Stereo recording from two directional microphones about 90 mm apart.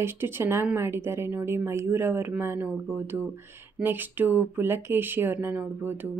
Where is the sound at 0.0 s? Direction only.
25° right (ahead or behind).